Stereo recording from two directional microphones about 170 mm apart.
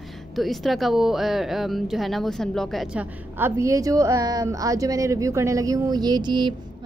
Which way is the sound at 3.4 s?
20° right (ahead or behind).